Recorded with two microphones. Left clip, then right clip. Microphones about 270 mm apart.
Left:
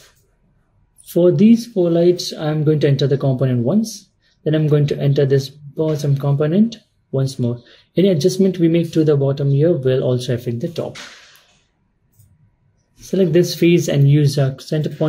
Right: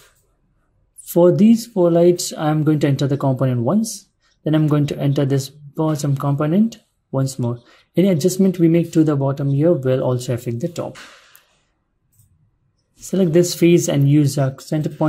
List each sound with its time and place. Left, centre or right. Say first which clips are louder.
1.0 s speech: even; right
13.0 s speech: left 1 dB; right